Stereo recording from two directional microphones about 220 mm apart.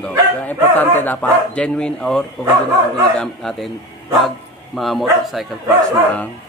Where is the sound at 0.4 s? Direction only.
10° left (ahead or behind).